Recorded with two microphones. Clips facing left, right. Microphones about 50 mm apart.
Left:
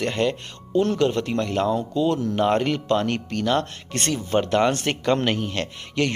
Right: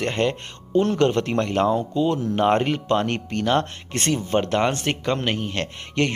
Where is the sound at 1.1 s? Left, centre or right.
Right; by 2.4 s centre.